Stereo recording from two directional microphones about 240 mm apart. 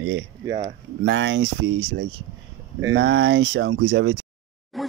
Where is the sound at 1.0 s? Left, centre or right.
Right.